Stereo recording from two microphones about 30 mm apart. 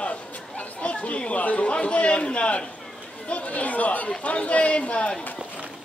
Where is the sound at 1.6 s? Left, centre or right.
Left.